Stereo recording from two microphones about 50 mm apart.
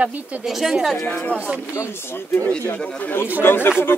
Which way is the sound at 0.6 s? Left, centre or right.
Centre.